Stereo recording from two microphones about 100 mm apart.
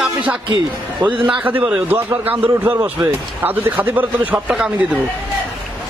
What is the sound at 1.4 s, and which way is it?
A man's voice, 15° right (ahead or behind).